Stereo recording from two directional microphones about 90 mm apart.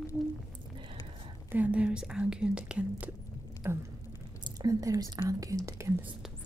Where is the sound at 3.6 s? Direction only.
25° right (ahead or behind).